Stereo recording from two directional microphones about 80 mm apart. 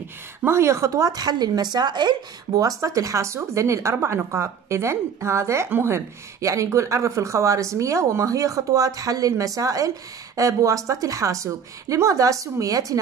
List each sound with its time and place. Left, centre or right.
0.5 s a woman's voice: right